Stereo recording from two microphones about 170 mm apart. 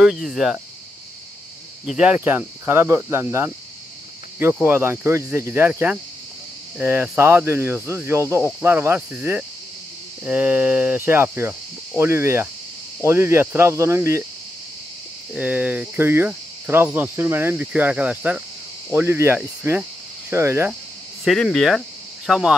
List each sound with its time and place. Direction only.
0.0 s speech: centre (ahead or behind)
1.9 s cricket: 5° right (ahead or behind)
15.3 s cricket: 10° right (ahead or behind)
21.2 s speech: centre (ahead or behind)